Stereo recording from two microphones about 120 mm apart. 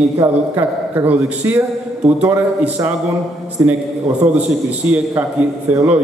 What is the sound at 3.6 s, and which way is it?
A man's voice, 15° right (ahead or behind).